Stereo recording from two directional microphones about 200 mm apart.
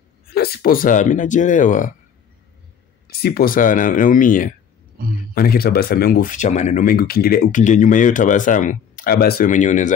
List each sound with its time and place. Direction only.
0.3 s speech: 50° left (ahead or behind)
3.1 s speech: 50° left (ahead or behind)
5.0 s speech: 45° right (ahead or behind)
5.3 s speech: 50° left (ahead or behind)